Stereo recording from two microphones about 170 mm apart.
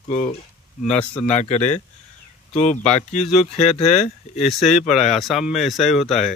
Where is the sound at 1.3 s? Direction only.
40° left (ahead or behind).